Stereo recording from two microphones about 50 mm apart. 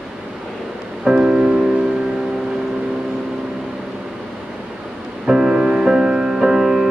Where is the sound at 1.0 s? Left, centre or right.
Centre.